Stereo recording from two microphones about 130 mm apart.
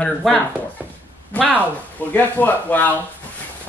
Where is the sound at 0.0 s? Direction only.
5° left (ahead or behind).